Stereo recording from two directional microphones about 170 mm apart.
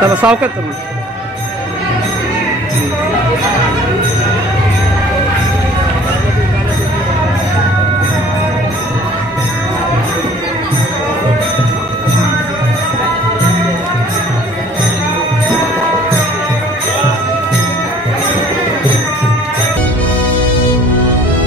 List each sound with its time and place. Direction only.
0.0 s speech: 5° right (ahead or behind)